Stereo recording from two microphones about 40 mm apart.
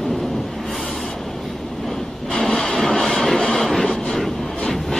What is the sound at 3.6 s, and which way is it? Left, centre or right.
Train, centre.